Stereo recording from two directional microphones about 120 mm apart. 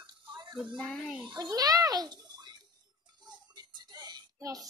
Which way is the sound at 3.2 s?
35° right (ahead or behind).